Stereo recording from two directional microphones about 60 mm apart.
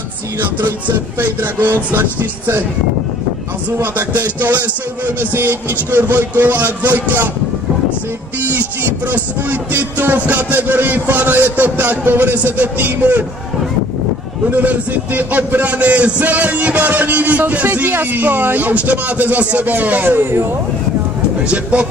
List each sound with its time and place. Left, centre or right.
0.4 s music: right
3.7 s music: right
8.5 s music: right
14.5 s a man's voice: right
21.5 s a man's voice: right